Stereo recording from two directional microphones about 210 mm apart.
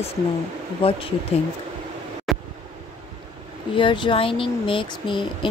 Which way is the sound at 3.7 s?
25° left (ahead or behind).